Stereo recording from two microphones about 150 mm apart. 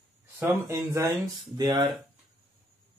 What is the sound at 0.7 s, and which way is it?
Speech, 20° right (ahead or behind).